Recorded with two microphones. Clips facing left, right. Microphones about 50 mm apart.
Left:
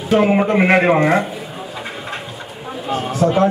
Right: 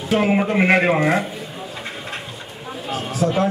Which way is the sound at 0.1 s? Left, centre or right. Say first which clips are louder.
Left 4 dB; centre.